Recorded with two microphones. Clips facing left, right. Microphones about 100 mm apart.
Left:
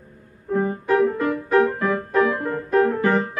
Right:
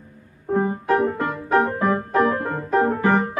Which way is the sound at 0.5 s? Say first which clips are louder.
Even; 25° right (ahead or behind).